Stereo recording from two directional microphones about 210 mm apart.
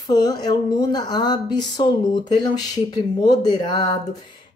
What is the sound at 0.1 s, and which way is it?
Speech, 20° left (ahead or behind).